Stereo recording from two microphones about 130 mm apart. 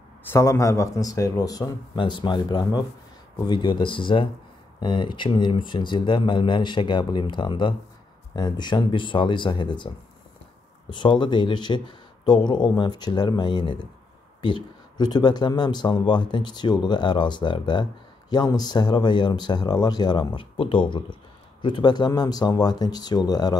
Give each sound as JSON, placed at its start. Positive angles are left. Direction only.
{"t": 0.2, "sound": "speech", "side_deg": 20}
{"t": 10.9, "sound": "speech", "side_deg": 35}